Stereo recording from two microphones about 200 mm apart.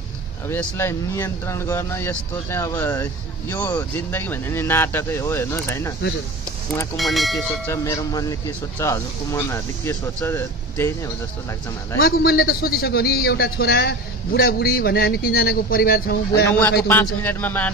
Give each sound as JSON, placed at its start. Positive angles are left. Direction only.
{"t": 0.5, "sound": "speech", "side_deg": 10}
{"t": 7.0, "sound": "speech", "side_deg": 0}
{"t": 7.6, "sound": "speech", "side_deg": 15}
{"t": 12.0, "sound": "a man's voice", "side_deg": 50}
{"t": 16.4, "sound": "speech", "side_deg": 10}